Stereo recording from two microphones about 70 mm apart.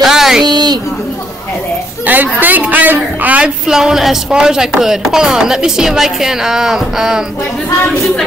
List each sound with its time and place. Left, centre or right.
0.0 s a sound: centre
0.5 s a woman's voice: right
2.0 s a woman's voice: right; by 7.2 s centre